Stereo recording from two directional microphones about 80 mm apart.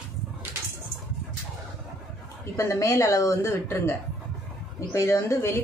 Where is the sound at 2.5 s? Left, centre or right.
Left.